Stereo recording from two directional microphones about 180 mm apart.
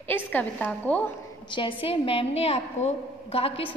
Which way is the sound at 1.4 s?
25° left (ahead or behind).